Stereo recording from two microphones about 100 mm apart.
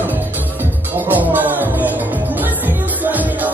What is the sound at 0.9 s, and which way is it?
Music, 20° right (ahead or behind).